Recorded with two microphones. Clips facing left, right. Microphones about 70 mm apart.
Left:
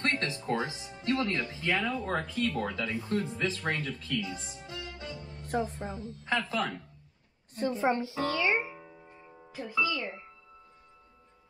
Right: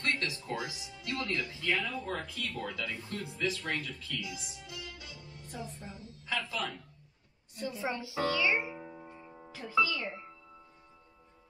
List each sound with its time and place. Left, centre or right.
0.0 s speech: left
5.5 s speech: left
8.7 s music: centre
9.8 s speech: centre